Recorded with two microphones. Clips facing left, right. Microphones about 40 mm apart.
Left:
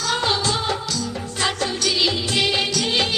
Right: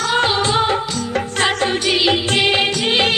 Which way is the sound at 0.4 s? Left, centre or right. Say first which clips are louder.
Right 6 dB; right.